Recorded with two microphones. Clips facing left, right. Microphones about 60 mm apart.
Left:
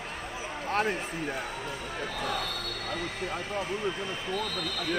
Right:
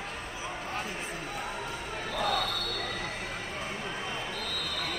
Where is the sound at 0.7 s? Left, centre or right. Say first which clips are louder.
Left 11 dB; left.